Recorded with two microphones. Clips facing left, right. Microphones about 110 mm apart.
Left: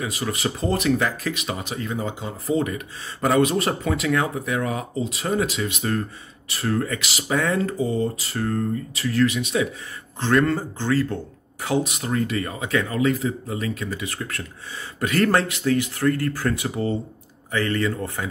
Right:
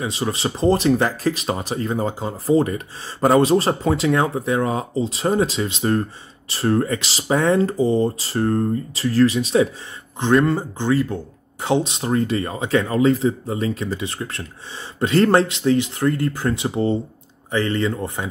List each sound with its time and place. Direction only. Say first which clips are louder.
0.0 s speech: right 3 dB; 30° right (ahead or behind)
10.2 s speech: right 3 dB; 20° right (ahead or behind)